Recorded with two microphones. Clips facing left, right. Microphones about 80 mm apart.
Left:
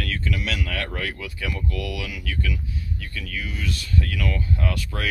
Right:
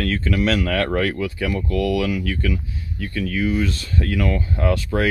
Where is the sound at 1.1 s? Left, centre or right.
Right.